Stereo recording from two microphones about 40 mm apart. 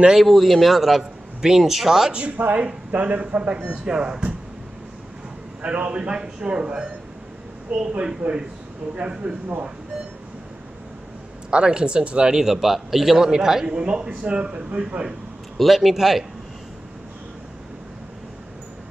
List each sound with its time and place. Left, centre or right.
0.2 s a man's voice: centre
2.1 s speech: right
2.9 s speech: right
3.2 s speech: right
3.7 s a man's voice: right
5.6 s a man's voice: right
8.2 s a man's voice: right
8.9 s a man's voice: right
11.5 s a man's voice: right
12.3 s a man's voice: centre
13.7 s a man's voice: right
15.5 s a man's voice: centre